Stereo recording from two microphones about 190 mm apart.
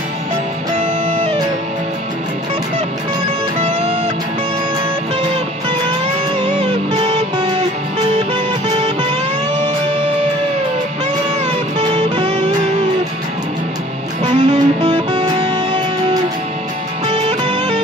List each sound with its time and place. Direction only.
0.7 s music: 35° right (ahead or behind)
6.4 s music: 35° right (ahead or behind)
14.2 s music: 35° right (ahead or behind)
17.1 s music: 30° right (ahead or behind)